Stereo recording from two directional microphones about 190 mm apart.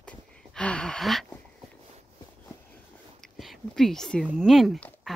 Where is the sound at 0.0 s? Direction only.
5° left (ahead or behind).